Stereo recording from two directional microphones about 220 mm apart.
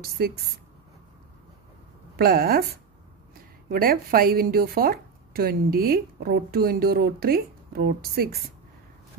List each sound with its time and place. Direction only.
0.2 s a woman's voice: 45° right (ahead or behind)
2.1 s a woman's voice: 45° right (ahead or behind)
3.7 s a woman's voice: 40° right (ahead or behind)